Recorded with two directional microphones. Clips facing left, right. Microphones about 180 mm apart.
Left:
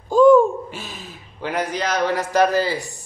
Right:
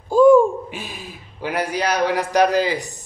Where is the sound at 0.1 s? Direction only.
10° right (ahead or behind).